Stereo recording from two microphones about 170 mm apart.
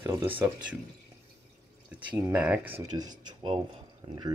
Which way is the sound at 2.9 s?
25° right (ahead or behind).